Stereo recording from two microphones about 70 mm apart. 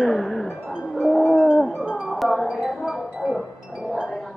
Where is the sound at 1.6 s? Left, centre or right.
Centre.